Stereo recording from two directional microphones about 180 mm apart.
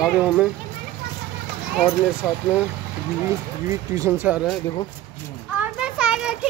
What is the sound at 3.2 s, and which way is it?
Speech, 15° right (ahead or behind).